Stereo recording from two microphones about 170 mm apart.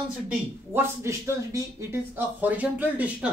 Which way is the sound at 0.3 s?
15° right (ahead or behind).